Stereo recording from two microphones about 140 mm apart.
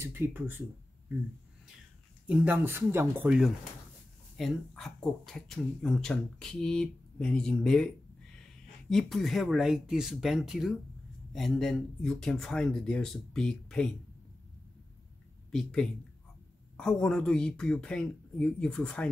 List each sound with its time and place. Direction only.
0.0 s speech: 15° right (ahead or behind)
2.2 s speech: 10° right (ahead or behind)
3.3 s speech: 5° right (ahead or behind)
15.5 s speech: 5° left (ahead or behind)